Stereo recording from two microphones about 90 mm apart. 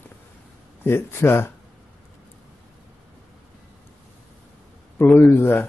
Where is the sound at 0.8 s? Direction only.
25° left (ahead or behind).